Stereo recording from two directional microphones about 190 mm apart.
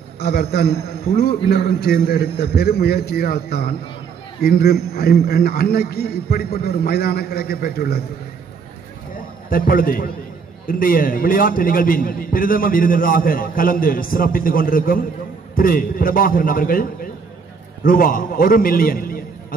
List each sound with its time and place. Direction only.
0.2 s a man's voice: 55° left (ahead or behind)
9.5 s a man's voice: 50° left (ahead or behind)
17.8 s a man's voice: 50° left (ahead or behind)